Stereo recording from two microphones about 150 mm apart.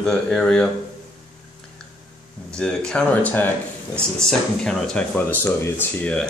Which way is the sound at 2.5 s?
5° left (ahead or behind).